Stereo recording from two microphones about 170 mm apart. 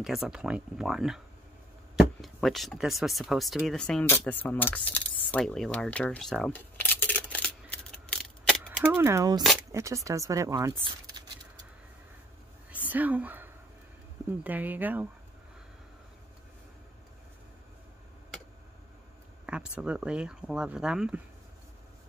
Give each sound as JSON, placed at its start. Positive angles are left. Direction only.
{"t": 0.0, "sound": "speech", "side_deg": 0}
{"t": 2.2, "sound": "speech", "side_deg": 0}
{"t": 8.1, "sound": "a sound", "side_deg": 5}
{"t": 8.9, "sound": "speech", "side_deg": -15}
{"t": 10.8, "sound": "a sound", "side_deg": -25}
{"t": 12.7, "sound": "whispering", "side_deg": -10}
{"t": 14.4, "sound": "speech", "side_deg": -10}
{"t": 19.4, "sound": "speech", "side_deg": -5}